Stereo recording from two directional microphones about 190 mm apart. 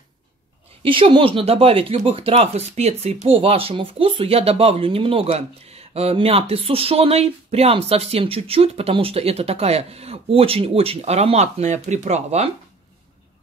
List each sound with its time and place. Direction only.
0.8 s speech: 25° right (ahead or behind)